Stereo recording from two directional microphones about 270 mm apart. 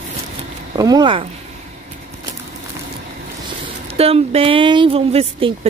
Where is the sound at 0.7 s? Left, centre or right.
Centre.